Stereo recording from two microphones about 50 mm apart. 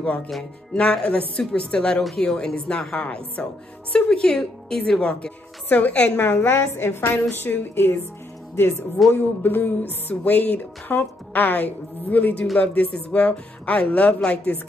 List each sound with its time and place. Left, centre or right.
0.4 s a woman's voice: left
5.7 s speech: left
6.1 s a woman's voice: left
8.6 s speech: left
9.1 s speech: left